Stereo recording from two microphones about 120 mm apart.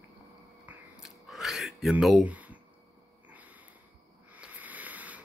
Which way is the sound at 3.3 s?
15° right (ahead or behind).